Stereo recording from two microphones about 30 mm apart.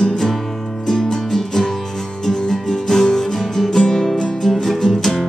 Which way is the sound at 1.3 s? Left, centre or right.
Centre.